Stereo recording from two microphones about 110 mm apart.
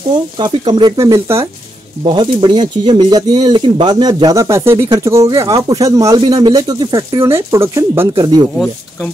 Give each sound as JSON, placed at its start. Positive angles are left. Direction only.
{"t": 0.1, "sound": "speech", "side_deg": -45}
{"t": 2.1, "sound": "speech", "side_deg": -45}
{"t": 6.1, "sound": "speech", "side_deg": -45}
{"t": 7.2, "sound": "speech", "side_deg": -20}
{"t": 8.1, "sound": "speech", "side_deg": -40}